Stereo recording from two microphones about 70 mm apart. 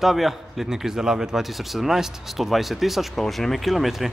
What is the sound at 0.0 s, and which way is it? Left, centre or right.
A man's voice, centre.